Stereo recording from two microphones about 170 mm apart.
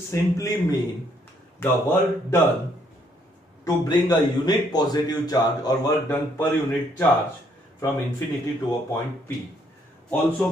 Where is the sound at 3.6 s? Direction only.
25° left (ahead or behind).